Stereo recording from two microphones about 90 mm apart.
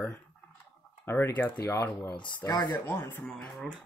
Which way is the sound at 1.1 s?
25° left (ahead or behind).